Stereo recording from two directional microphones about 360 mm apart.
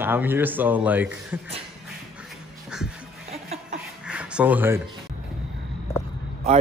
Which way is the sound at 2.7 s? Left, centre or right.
Centre.